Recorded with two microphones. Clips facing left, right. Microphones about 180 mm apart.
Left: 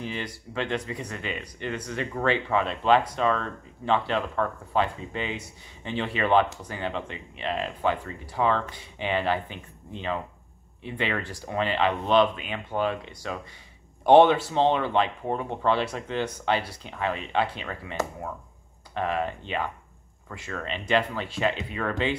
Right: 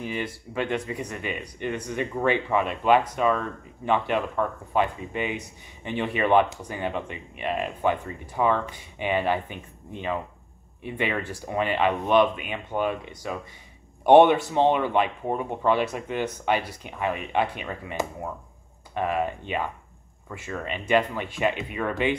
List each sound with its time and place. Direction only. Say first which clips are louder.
0.0 s speech: right 3 dB; 10° right (ahead or behind)
11.0 s speech: right 2 dB; 15° right (ahead or behind)
14.5 s speech: right 1 dB; 15° right (ahead or behind)